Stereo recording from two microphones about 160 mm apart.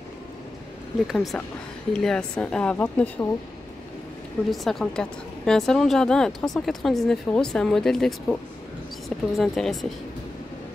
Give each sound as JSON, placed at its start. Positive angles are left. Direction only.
{"t": 1.0, "sound": "a woman's voice", "side_deg": 0}
{"t": 4.5, "sound": "speech", "side_deg": 0}